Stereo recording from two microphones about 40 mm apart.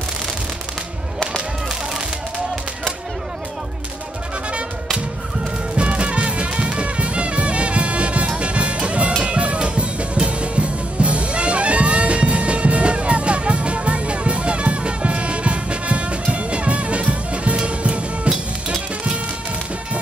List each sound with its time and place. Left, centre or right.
5.8 s music: right